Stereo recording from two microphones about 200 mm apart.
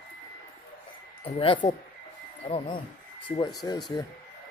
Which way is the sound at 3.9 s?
20° left (ahead or behind).